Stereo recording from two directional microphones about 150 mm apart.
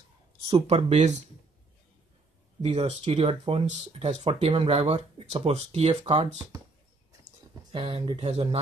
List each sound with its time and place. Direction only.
0.5 s speech: 40° right (ahead or behind)
2.6 s speech: 45° right (ahead or behind)
7.7 s speech: 35° right (ahead or behind)